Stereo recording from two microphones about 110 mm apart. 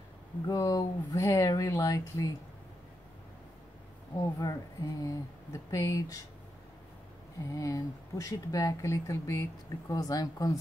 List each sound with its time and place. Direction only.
0.5 s speech: 30° left (ahead or behind)
4.4 s speech: 35° left (ahead or behind)
7.5 s speech: 30° left (ahead or behind)